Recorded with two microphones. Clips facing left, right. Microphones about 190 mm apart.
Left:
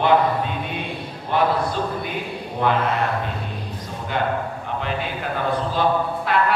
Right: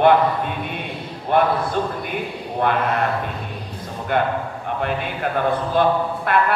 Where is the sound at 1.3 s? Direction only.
55° right (ahead or behind).